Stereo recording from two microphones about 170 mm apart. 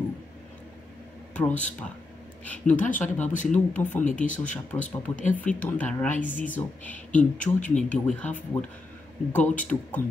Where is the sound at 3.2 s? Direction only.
45° left (ahead or behind).